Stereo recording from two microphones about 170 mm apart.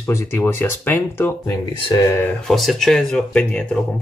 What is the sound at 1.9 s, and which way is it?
Speech, 25° left (ahead or behind).